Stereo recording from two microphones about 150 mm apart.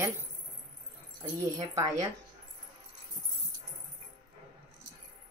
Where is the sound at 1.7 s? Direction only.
25° right (ahead or behind).